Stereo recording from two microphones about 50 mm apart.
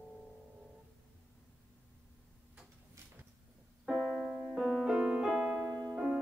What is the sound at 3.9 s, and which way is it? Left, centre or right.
Keyboard, centre.